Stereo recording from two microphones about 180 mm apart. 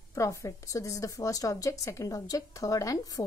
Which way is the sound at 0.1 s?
15° left (ahead or behind).